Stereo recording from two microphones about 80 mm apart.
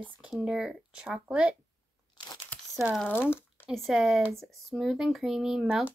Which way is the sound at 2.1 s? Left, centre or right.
Left.